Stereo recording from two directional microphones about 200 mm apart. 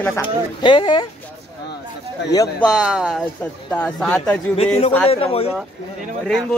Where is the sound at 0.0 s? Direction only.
10° left (ahead or behind).